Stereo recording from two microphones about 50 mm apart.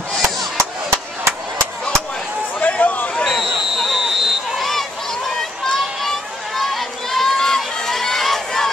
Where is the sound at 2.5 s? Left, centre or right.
Left.